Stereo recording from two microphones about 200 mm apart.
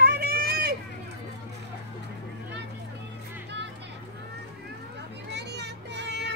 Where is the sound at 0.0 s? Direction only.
50° right (ahead or behind).